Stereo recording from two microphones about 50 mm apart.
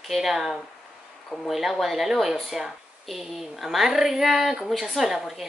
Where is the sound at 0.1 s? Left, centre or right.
Centre.